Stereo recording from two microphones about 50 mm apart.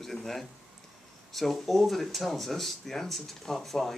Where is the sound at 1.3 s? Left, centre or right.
Centre.